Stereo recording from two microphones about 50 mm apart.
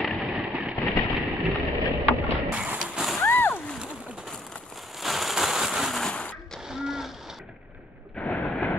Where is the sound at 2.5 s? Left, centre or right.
Right.